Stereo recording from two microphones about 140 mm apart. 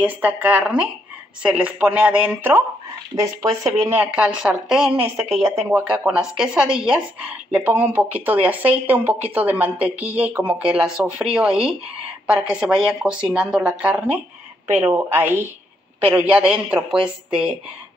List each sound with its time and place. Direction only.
0.0 s speech: 10° right (ahead or behind)
14.7 s speech: 20° right (ahead or behind)